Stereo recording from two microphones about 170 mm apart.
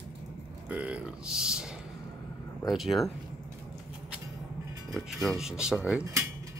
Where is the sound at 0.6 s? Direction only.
5° right (ahead or behind).